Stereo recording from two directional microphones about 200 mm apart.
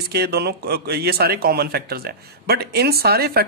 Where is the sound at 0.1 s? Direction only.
55° right (ahead or behind).